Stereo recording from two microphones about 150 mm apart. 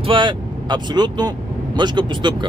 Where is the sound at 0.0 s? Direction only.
35° right (ahead or behind).